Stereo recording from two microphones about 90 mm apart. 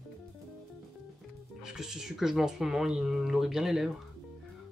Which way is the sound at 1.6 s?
5° right (ahead or behind).